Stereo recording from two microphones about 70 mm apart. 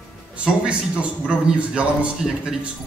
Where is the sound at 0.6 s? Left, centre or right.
Centre.